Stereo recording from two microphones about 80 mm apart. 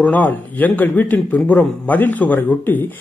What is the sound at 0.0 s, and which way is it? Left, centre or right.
A man's voice, left.